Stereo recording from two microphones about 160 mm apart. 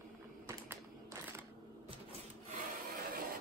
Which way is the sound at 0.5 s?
15° right (ahead or behind).